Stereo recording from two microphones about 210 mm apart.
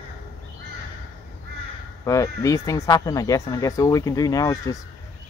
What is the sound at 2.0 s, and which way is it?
Speech, 15° left (ahead or behind).